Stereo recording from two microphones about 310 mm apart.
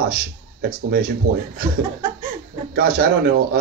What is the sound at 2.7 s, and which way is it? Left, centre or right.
Speech, right.